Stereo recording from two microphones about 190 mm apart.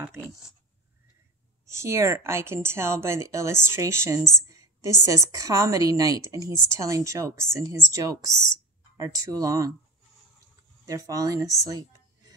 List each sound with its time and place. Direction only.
0.0 s speech: 10° right (ahead or behind)
1.7 s speech: 15° right (ahead or behind)
4.4 s a sound: 15° right (ahead or behind)
5.0 s speech: 15° right (ahead or behind)
10.9 s speech: 20° right (ahead or behind)